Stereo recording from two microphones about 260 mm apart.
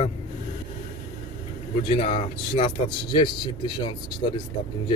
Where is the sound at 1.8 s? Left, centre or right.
Left.